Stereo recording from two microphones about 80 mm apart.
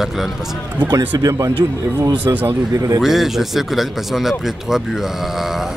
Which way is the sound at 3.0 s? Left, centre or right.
Centre.